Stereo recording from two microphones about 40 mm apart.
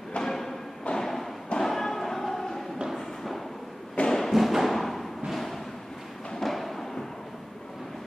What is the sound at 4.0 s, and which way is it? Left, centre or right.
Music, left.